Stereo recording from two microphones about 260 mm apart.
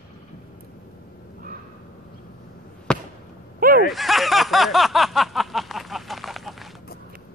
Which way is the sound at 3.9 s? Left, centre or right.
Centre.